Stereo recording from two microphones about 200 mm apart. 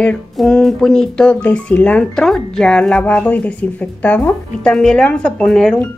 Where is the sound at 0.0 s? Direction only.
5° left (ahead or behind).